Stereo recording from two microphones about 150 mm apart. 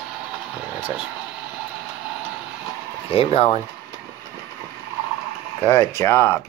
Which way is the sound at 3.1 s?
40° left (ahead or behind).